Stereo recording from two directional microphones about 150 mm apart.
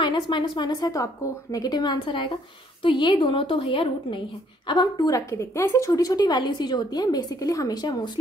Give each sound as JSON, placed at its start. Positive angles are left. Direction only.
{"t": 0.0, "sound": "a woman's voice", "side_deg": 30}